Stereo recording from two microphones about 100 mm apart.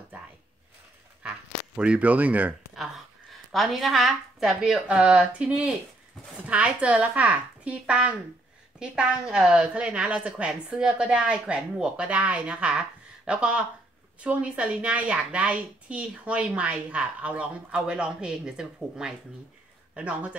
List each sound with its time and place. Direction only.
1.8 s a woman's voice: 15° right (ahead or behind)
3.5 s a woman's voice: centre (ahead or behind)